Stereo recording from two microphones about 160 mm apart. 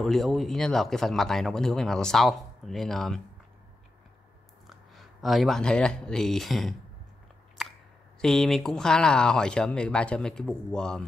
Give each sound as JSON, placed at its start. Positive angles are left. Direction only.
{"t": 0.0, "sound": "speech", "side_deg": 0}
{"t": 4.6, "sound": "speech", "side_deg": 0}
{"t": 8.2, "sound": "speech", "side_deg": 0}